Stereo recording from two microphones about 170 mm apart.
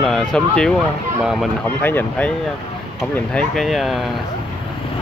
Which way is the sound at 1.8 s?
10° left (ahead or behind).